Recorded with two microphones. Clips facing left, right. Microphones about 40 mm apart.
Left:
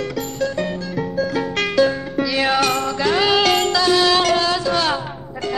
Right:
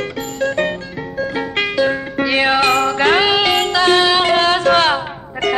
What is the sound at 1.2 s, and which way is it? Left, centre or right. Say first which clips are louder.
Music: right 2 dB; right.